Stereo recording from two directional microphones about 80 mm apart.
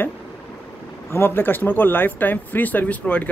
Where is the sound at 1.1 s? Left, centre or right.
Left.